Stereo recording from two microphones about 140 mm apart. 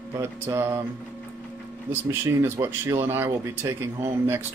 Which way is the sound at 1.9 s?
15° right (ahead or behind).